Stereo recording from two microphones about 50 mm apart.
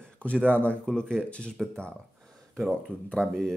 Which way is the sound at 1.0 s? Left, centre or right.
Centre.